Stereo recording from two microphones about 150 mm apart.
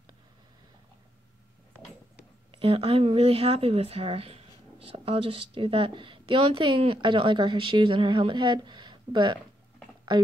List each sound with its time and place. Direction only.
2.6 s speech: 40° right (ahead or behind)